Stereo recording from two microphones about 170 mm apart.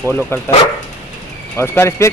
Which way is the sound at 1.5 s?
15° left (ahead or behind).